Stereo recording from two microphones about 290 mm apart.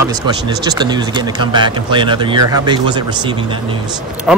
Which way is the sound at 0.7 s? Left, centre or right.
Centre.